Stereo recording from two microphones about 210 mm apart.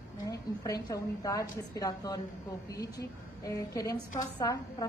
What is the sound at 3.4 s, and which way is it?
A woman's voice, 15° left (ahead or behind).